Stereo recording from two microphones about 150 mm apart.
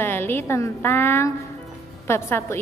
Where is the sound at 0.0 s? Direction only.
15° left (ahead or behind).